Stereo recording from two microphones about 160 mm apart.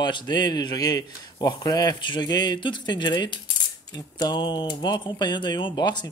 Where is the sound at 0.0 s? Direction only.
30° left (ahead or behind).